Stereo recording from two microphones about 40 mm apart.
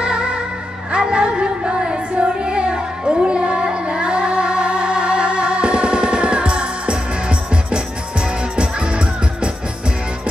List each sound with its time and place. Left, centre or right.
0.0 s music: right
0.9 s child singing: right